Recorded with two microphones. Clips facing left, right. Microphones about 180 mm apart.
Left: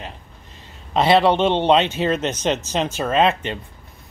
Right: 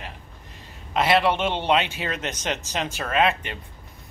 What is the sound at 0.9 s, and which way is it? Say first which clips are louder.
Speech: left 5 dB; 25° left (ahead or behind).